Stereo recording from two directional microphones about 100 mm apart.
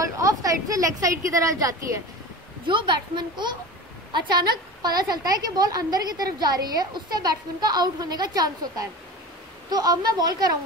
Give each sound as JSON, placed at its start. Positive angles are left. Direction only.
{"t": 0.0, "sound": "a woman's voice", "side_deg": -35}
{"t": 2.6, "sound": "a woman's voice", "side_deg": -55}